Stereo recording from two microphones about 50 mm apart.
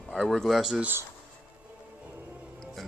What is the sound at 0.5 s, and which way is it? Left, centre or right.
Speech, centre.